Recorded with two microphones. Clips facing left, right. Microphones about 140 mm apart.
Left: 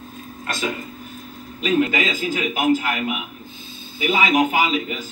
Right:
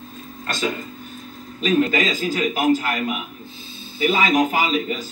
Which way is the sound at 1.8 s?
35° right (ahead or behind).